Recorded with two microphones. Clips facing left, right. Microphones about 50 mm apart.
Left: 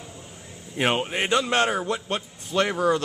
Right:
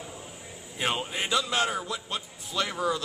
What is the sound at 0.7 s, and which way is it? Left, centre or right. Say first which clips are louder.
A man's voice: left 6 dB; left.